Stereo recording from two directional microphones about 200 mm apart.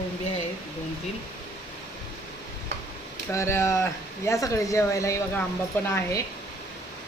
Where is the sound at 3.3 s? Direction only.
15° left (ahead or behind).